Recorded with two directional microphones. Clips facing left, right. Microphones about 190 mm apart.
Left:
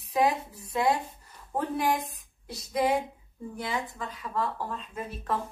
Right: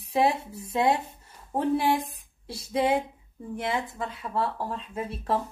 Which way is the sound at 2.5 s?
25° right (ahead or behind).